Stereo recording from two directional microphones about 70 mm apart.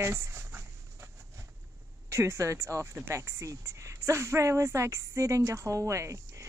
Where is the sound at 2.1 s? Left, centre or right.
Right.